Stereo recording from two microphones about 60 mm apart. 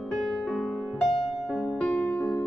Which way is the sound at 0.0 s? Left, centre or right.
Centre.